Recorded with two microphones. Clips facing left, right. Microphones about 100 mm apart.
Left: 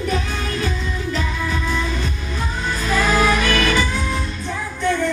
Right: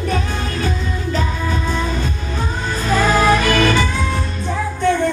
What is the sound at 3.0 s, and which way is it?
Music, 35° right (ahead or behind).